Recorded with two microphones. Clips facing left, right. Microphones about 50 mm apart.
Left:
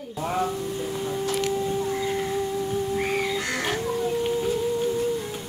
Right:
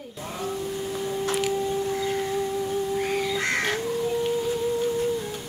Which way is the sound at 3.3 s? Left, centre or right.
Right.